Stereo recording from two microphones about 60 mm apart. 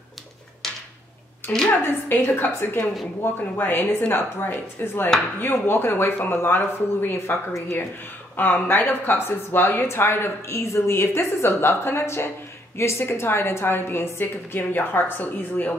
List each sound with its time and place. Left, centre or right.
1.5 s a woman's voice: left
8.4 s a woman's voice: left